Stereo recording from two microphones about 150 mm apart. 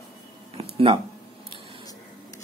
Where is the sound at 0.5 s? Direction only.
40° right (ahead or behind).